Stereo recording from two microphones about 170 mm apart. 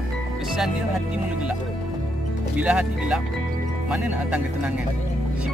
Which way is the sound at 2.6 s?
5° right (ahead or behind).